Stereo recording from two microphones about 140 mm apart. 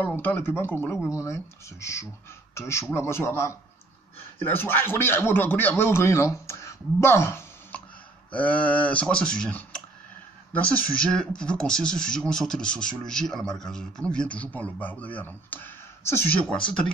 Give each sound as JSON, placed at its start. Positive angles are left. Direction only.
{"t": 0.0, "sound": "a man's voice", "side_deg": 15}